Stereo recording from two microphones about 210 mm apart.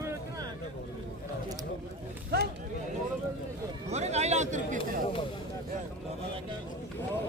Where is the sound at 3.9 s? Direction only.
30° right (ahead or behind).